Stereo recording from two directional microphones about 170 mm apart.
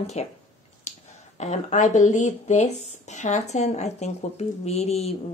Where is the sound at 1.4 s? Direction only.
45° left (ahead or behind).